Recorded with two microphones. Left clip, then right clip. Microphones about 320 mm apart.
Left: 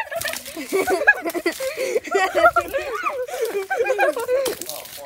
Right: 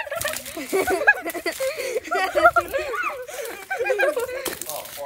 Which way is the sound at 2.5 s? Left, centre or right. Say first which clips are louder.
Even; centre.